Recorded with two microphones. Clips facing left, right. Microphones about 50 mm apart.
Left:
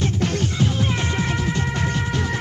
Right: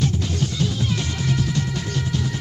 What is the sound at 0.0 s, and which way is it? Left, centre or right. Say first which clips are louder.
Music: left 1 dB; left.